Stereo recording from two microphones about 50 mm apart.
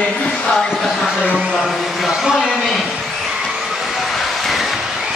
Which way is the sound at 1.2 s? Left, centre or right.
Right.